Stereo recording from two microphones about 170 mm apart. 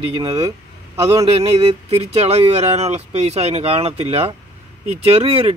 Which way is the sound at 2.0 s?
40° right (ahead or behind).